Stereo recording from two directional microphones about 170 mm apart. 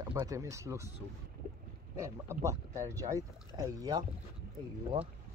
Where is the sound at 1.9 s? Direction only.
15° right (ahead or behind).